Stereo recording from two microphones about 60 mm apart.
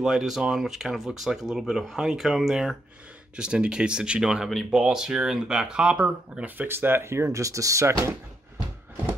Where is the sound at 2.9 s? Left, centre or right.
Centre; by 8.1 s right.